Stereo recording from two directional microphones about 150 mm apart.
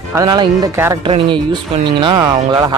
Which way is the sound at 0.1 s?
25° right (ahead or behind).